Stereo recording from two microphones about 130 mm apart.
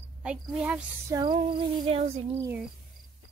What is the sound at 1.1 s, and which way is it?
Female singing, 35° right (ahead or behind).